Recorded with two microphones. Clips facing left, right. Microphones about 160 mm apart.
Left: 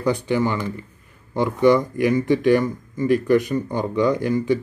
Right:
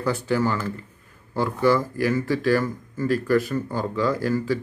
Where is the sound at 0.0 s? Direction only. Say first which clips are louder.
Left 2 dB; 15° left (ahead or behind).